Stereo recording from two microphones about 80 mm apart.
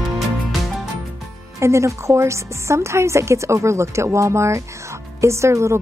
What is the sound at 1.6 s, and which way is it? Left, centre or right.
Speech, right.